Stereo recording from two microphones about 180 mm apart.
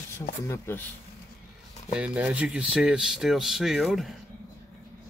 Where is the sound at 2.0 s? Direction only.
5° right (ahead or behind).